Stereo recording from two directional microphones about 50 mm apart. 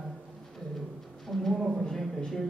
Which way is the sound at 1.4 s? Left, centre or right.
Centre.